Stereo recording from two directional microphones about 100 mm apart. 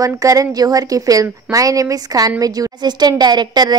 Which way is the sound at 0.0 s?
35° right (ahead or behind).